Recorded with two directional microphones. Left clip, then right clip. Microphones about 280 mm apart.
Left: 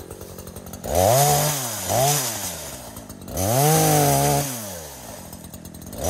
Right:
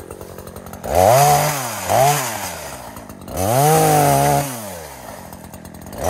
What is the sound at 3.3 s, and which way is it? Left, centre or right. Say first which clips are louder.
Chainsaw: right 5 dB; right.